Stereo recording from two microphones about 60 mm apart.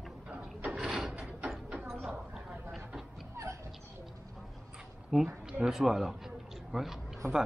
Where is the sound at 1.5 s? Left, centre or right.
Centre.